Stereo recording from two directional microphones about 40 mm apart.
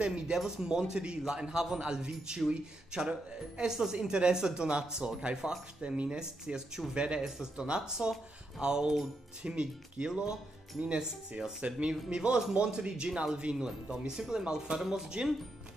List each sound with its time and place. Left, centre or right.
0.0 s a man's voice: right